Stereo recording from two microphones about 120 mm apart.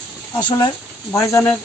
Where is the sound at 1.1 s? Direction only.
25° left (ahead or behind).